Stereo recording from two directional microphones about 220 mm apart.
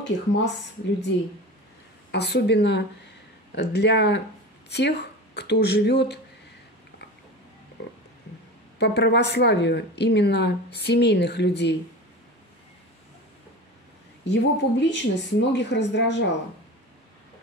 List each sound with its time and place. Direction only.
0.0 s speech: 55° left (ahead or behind)
2.1 s speech: 50° left (ahead or behind)
8.7 s speech: 50° left (ahead or behind)
14.2 s speech: 50° left (ahead or behind)